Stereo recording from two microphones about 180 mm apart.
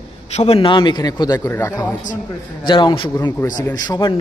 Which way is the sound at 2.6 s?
25° left (ahead or behind).